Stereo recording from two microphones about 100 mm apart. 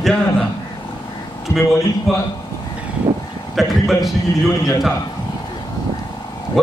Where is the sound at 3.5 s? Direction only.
Centre (ahead or behind).